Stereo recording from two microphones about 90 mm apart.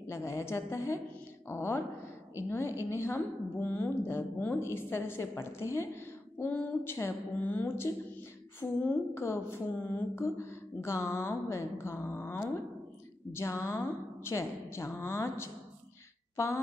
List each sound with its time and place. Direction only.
0.1 s a woman's voice: 35° left (ahead or behind)
2.8 s a woman's voice: 30° left (ahead or behind)